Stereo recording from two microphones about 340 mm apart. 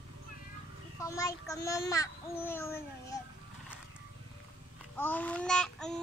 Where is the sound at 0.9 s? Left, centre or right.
Centre.